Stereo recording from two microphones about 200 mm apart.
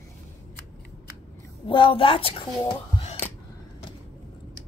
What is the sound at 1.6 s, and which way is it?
Speech, 25° left (ahead or behind).